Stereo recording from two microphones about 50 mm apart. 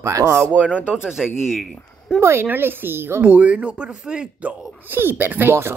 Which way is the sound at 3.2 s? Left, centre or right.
Right.